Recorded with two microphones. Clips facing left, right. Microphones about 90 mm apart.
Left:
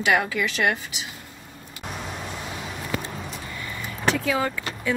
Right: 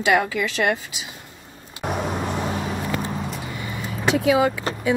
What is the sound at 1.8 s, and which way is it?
Vehicle, 60° right (ahead or behind).